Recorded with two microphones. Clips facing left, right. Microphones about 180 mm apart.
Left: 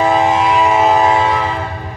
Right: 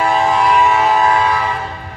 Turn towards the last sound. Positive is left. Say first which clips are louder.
# left 2 dB
turn(degrees=20)  # may be behind; listen again after turning